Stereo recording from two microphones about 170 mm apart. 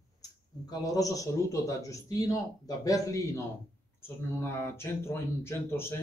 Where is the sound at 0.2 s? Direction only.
20° left (ahead or behind).